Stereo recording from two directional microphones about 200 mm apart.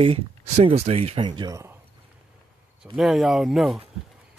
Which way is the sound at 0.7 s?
30° right (ahead or behind).